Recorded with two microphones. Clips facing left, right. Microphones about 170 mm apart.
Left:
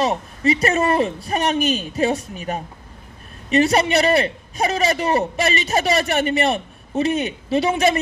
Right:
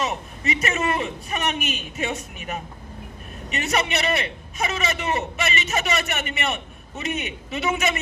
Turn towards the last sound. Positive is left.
turn(degrees=35)  # may be behind; listen again after turning